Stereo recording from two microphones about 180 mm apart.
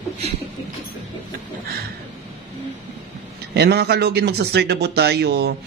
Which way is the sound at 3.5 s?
65° right (ahead or behind).